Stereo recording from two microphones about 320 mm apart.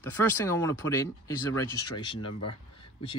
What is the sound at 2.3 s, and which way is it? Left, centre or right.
Speech, left.